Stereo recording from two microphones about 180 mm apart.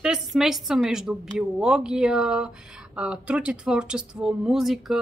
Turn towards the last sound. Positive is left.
turn(degrees=0)  # may be behind; listen again after turning